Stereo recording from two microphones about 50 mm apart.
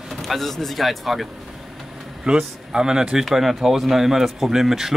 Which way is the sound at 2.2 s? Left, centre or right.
Centre.